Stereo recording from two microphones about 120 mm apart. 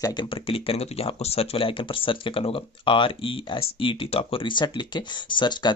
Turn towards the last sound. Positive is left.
turn(degrees=40)  # may be behind; listen again after turning